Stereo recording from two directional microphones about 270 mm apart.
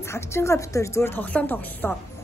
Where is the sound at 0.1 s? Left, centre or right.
Centre.